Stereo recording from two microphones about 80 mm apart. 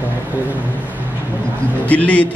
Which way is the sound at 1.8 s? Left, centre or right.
Centre.